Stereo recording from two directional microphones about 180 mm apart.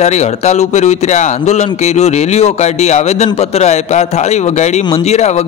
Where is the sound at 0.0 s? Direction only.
40° left (ahead or behind).